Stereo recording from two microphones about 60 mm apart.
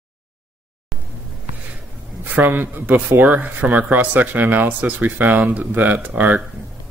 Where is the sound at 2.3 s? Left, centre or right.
Right.